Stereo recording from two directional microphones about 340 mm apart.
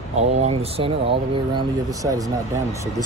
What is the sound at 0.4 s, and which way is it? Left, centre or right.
Speech, centre.